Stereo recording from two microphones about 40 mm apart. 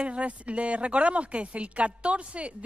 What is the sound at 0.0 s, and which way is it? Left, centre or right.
A woman's voice, right.